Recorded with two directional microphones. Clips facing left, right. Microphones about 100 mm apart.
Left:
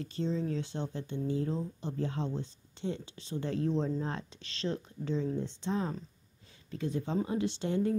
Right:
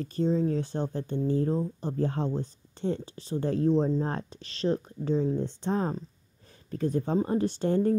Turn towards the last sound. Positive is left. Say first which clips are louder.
# right 6 dB
turn(degrees=-45)  # may be behind; listen again after turning